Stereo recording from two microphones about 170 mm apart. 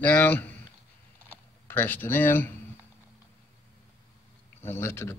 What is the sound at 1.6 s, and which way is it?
Speech, 10° left (ahead or behind).